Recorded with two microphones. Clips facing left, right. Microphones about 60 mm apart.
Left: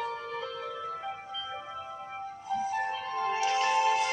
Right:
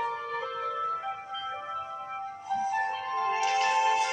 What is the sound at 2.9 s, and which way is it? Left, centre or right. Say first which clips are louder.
Music: right 2 dB; right.